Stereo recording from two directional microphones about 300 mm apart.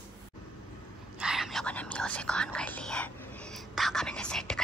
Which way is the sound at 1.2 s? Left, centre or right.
Centre.